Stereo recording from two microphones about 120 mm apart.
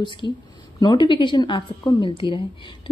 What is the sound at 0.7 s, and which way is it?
A woman's voice, 40° left (ahead or behind).